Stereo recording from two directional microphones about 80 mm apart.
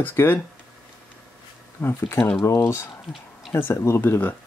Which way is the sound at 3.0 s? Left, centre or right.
Centre.